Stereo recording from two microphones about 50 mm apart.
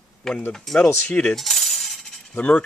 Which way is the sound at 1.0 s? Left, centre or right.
Left.